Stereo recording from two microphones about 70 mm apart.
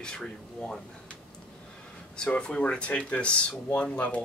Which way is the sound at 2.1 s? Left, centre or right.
Centre.